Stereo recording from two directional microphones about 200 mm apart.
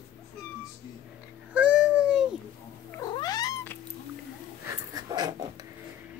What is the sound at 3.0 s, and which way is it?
Cat, 20° left (ahead or behind).